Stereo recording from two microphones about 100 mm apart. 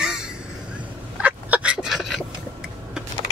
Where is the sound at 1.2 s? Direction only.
15° right (ahead or behind).